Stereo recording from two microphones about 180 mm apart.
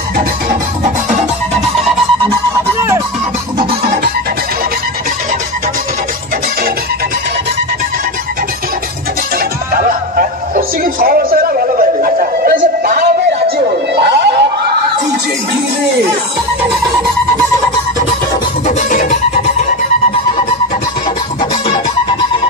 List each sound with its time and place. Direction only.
9.8 s music: 50° right (ahead or behind)
13.9 s a sound: 65° right (ahead or behind)
18.8 s music: 45° left (ahead or behind)